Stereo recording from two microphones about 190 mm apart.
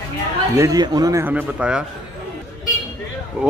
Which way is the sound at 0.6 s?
20° right (ahead or behind).